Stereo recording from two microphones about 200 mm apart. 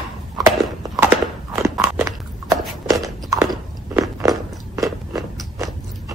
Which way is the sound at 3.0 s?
15° right (ahead or behind).